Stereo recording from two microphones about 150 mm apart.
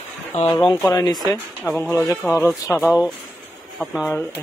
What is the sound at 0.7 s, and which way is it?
Speech, 25° left (ahead or behind).